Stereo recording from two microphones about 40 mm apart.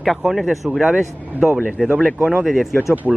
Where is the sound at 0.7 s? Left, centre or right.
Right.